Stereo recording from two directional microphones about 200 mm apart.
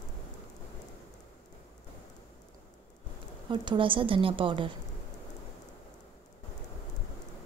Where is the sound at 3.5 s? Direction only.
25° right (ahead or behind).